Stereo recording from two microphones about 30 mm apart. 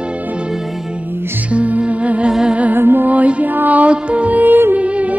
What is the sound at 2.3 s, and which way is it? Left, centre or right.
Music, right.